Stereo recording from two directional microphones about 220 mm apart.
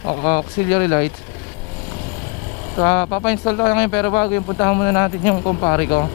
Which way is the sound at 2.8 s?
15° left (ahead or behind).